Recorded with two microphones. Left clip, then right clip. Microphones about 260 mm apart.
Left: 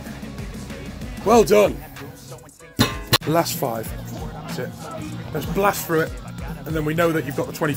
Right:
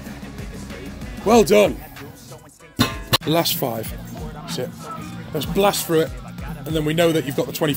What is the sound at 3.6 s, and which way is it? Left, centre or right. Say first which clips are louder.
Speech: even; right.